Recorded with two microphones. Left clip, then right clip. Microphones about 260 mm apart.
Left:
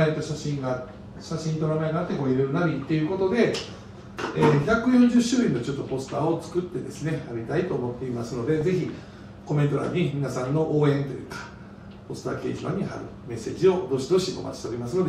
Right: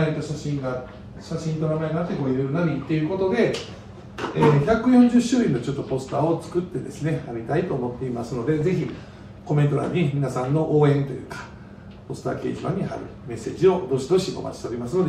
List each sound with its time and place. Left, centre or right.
0.0 s speech: centre
0.4 s a man's voice: centre
1.3 s speech: centre